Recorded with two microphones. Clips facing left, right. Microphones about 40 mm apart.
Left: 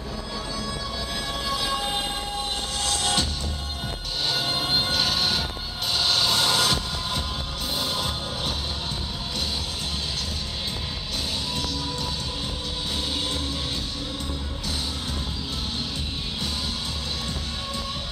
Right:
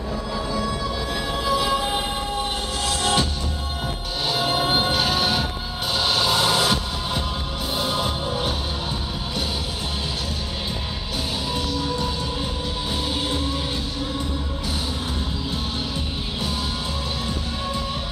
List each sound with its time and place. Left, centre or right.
0.5 s music: centre
1.3 s train: centre
4.3 s music: centre
11.5 s music: centre